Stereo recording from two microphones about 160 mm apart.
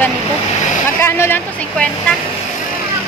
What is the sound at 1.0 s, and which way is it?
Speech, 15° left (ahead or behind).